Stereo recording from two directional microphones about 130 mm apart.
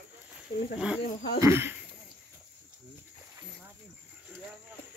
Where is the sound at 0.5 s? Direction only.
55° left (ahead or behind).